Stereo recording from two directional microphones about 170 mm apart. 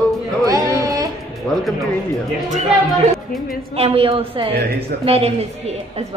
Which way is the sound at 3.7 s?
35° right (ahead or behind).